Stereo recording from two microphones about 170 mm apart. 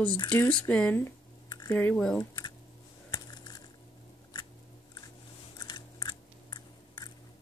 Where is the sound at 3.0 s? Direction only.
25° left (ahead or behind).